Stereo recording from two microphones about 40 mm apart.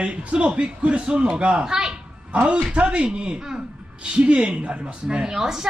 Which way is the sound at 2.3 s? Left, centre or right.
Right.